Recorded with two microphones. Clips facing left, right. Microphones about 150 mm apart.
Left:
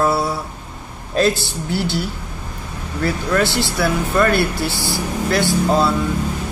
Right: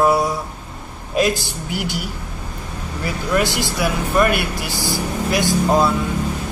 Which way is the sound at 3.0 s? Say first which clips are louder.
Left 2 dB; 15° right (ahead or behind).